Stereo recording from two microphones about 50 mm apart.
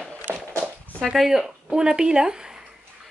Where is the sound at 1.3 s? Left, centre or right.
Centre.